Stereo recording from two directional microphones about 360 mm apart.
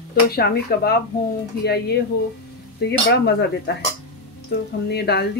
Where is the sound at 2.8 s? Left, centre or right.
Left.